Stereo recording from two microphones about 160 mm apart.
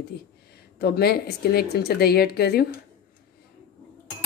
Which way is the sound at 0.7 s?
80° left.